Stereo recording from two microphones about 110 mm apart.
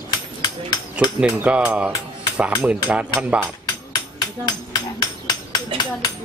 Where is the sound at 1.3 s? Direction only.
10° right (ahead or behind).